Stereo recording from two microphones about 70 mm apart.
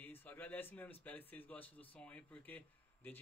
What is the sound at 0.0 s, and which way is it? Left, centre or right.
A man's voice, left.